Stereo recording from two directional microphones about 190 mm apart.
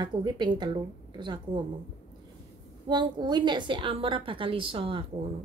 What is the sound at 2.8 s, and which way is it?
A woman's voice, 25° right (ahead or behind).